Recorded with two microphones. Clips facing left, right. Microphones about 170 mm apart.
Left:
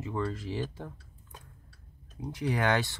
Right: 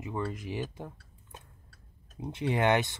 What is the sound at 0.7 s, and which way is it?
Tick-tock, 20° right (ahead or behind).